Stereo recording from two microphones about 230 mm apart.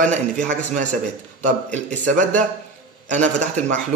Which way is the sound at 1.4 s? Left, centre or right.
Right.